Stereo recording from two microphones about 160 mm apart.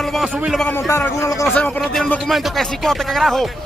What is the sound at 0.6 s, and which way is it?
Speech, 15° left (ahead or behind).